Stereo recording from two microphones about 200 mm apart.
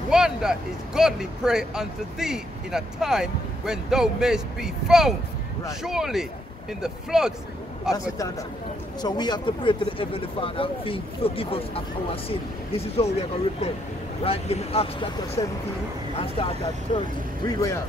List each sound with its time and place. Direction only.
0.1 s speech: 5° right (ahead or behind)
7.9 s a man's voice: 15° left (ahead or behind); by 17.0 s 35° left (ahead or behind)
17.5 s a man's voice: 15° left (ahead or behind)